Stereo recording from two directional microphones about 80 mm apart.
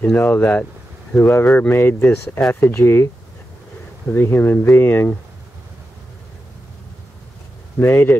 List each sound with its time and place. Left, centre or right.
0.1 s speech: left
4.1 s speech: left
7.8 s speech: left